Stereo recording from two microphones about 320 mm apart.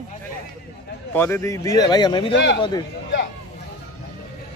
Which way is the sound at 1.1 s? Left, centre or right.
Centre.